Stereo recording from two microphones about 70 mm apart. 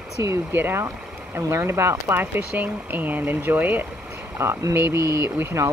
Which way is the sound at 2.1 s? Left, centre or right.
Right.